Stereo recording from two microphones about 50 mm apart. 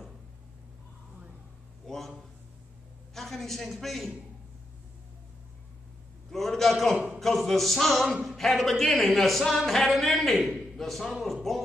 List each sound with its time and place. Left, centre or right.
1.9 s a sound: centre
3.2 s a man's voice: centre
6.3 s a man's voice: centre